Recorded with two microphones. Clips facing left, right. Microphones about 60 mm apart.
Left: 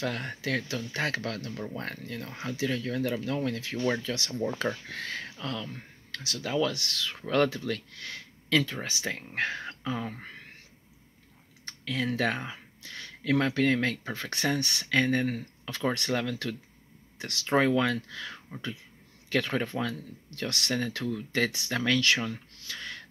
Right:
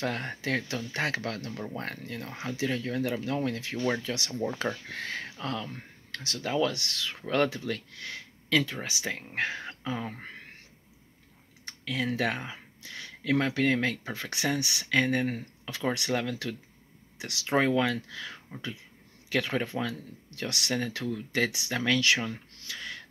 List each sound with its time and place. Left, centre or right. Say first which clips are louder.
0.0 s speech: right 1 dB; right
3.2 s speech: even; right
3.7 s speech: left 1 dB; centre
4.1 s speech: left 1 dB; right
11.6 s typing: even; centre
12.2 s speech: left 1 dB; centre
22.7 s a sound: even; centre